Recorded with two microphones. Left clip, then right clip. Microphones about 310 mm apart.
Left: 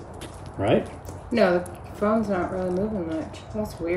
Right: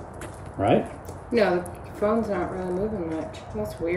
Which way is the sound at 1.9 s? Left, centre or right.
Centre.